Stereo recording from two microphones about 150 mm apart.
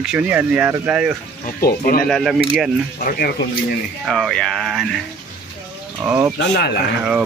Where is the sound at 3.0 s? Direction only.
80° left.